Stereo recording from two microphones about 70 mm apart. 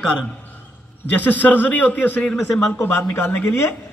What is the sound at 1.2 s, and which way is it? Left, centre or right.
A man's voice, left.